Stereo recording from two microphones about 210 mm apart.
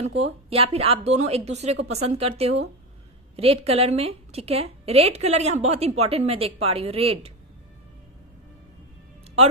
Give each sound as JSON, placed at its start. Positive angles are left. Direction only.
{"t": 0.0, "sound": "a woman's voice", "side_deg": -30}